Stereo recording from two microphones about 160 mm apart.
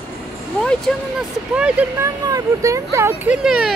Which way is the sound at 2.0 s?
20° right (ahead or behind).